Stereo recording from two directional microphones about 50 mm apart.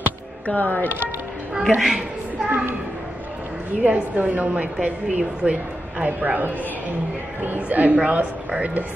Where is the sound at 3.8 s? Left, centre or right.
Right.